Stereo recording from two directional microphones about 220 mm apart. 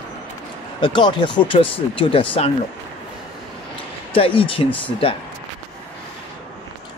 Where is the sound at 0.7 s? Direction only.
20° left (ahead or behind).